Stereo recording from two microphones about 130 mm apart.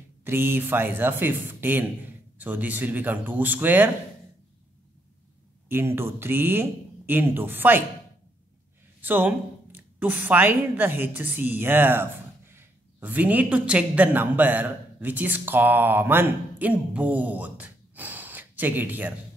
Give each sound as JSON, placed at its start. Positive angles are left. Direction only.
{"t": 0.2, "sound": "speech", "side_deg": -15}
{"t": 5.7, "sound": "speech", "side_deg": -20}
{"t": 9.0, "sound": "a woman's voice", "side_deg": -15}